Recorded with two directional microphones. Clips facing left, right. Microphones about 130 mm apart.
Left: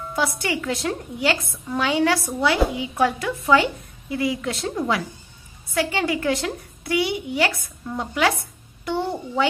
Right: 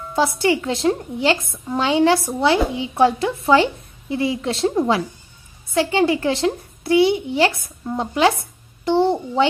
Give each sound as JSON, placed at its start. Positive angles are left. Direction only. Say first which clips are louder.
{"t": 0.1, "sound": "a woman's voice", "louder": "right 6 dB", "side_deg": -25}